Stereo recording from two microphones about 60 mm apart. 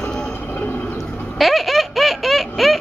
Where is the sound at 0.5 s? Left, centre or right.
Left.